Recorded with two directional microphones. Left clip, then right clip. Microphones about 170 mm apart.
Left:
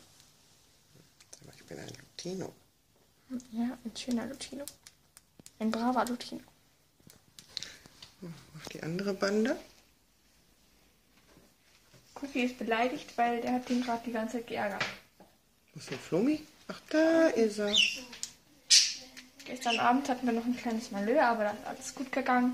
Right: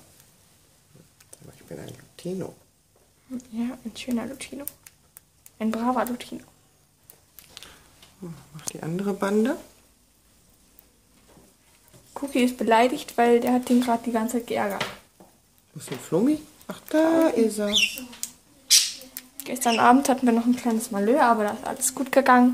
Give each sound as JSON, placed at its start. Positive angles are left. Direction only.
{"t": 1.7, "sound": "a sound", "side_deg": -5}
{"t": 3.3, "sound": "speech", "side_deg": 0}
{"t": 8.7, "sound": "speech", "side_deg": -5}
{"t": 12.4, "sound": "speech", "side_deg": -55}
{"t": 16.1, "sound": "speech", "side_deg": -10}
{"t": 19.4, "sound": "speech", "side_deg": -45}